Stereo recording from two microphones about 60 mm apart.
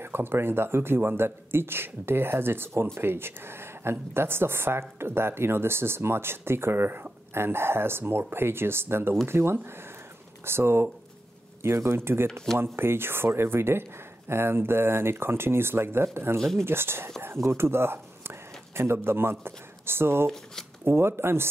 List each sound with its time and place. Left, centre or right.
0.0 s speech: right
16.3 s speech: centre
16.6 s speech: right